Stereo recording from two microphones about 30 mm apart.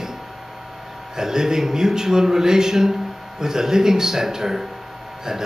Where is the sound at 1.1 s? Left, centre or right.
Centre.